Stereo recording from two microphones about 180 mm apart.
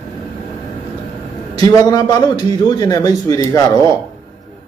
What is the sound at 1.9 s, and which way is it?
A man's voice, 20° left (ahead or behind).